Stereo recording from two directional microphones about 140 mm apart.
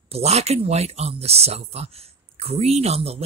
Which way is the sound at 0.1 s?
50° right (ahead or behind).